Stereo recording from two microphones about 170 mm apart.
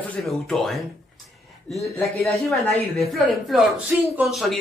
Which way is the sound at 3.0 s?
Centre (ahead or behind).